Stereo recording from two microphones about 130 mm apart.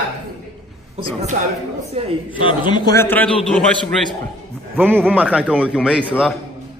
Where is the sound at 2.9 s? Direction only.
15° left (ahead or behind).